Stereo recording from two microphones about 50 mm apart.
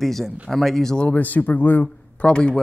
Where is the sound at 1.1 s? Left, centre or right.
Left.